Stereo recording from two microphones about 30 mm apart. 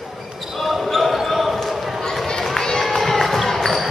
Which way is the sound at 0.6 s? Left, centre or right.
Centre.